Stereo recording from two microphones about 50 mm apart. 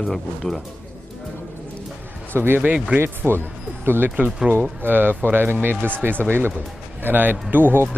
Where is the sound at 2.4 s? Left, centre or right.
Right.